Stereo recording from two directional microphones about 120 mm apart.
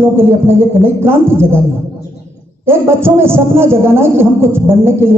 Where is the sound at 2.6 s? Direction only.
20° right (ahead or behind).